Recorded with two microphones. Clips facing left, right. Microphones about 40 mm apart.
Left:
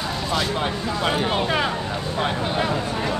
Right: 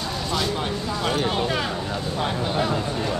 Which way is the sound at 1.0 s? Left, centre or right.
Centre.